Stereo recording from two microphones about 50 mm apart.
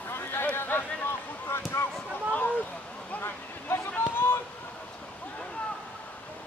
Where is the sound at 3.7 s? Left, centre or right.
Left.